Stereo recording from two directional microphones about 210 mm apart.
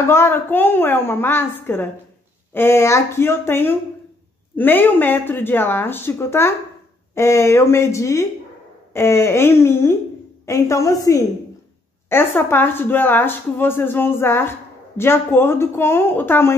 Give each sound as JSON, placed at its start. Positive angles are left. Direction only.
{"t": 0.0, "sound": "speech", "side_deg": 10}